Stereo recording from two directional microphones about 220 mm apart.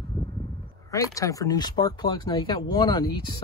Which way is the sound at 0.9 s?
15° left (ahead or behind).